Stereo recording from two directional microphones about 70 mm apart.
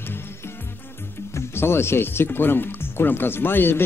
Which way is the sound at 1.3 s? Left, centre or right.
Left.